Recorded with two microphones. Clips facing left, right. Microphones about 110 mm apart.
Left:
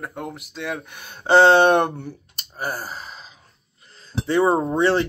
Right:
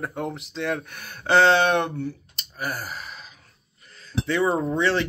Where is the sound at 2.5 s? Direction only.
30° left (ahead or behind).